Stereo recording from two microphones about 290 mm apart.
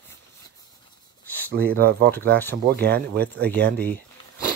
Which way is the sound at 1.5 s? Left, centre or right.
Right.